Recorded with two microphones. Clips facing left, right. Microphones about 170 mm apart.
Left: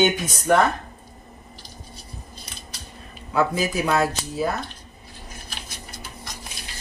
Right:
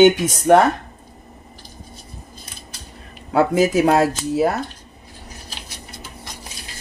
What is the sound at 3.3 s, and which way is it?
Speech, 85° right.